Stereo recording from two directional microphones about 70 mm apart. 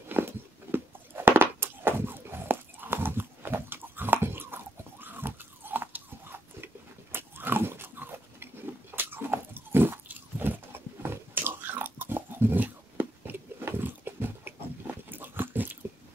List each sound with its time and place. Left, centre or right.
0.1 s a sound: right
8.9 s biting: right
15.0 s dog: right